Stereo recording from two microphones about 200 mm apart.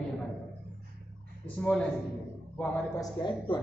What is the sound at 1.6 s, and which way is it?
Speech, 5° left (ahead or behind).